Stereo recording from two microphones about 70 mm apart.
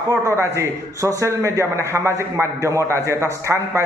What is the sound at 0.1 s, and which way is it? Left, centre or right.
A man's voice, right.